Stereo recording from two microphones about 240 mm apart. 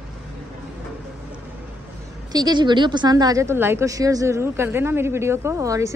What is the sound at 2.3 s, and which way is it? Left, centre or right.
A woman's voice, centre.